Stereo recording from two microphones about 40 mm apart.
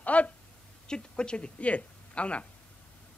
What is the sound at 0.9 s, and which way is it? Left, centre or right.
A man's voice, left.